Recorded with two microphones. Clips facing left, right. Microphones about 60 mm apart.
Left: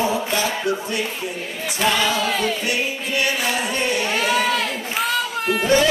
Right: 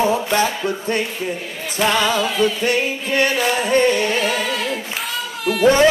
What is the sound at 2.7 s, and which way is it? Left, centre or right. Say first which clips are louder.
Music: right 4 dB; right.